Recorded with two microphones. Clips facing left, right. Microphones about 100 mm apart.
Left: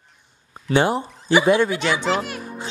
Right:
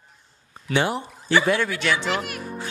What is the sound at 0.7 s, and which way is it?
Speech, 35° left (ahead or behind).